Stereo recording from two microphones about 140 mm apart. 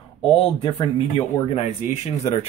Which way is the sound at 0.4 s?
40° left (ahead or behind).